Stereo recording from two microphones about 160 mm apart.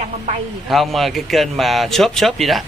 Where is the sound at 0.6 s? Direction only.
Centre (ahead or behind).